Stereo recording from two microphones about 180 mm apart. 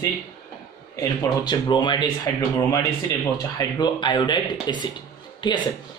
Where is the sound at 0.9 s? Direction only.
25° left (ahead or behind).